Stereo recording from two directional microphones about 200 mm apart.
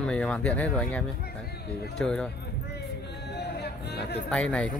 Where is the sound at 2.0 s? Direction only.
5° left (ahead or behind).